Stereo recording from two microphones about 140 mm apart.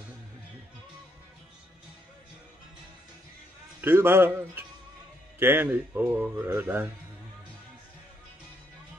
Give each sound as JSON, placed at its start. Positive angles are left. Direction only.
{"t": 3.8, "sound": "speech", "side_deg": -15}